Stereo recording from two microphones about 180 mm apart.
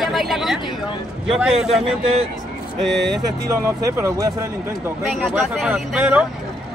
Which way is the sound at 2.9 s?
70° right (ahead or behind).